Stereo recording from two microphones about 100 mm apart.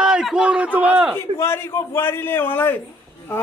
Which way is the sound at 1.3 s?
25° left (ahead or behind).